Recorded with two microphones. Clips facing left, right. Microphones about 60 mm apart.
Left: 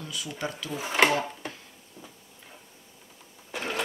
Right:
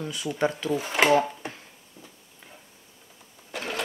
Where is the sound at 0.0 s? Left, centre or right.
Right.